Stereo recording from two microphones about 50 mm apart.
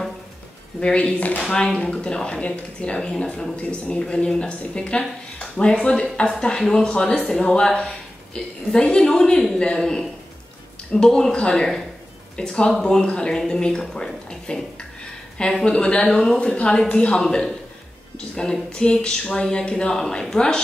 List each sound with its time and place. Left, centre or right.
0.7 s speech: left
1.5 s a woman's voice: centre
15.6 s speech: left
16.1 s speech: centre